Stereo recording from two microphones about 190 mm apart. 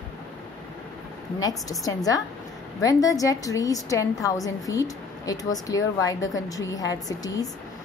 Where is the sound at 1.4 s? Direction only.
20° left (ahead or behind).